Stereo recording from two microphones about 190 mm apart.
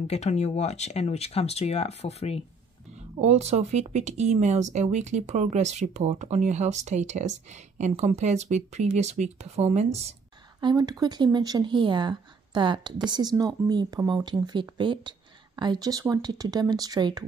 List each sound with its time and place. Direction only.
0.0 s speech: 35° left (ahead or behind)
3.2 s speech: 35° right (ahead or behind)
10.6 s speech: 20° right (ahead or behind)